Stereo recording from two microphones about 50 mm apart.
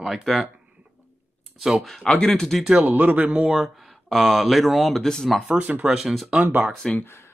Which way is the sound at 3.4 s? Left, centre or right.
Centre.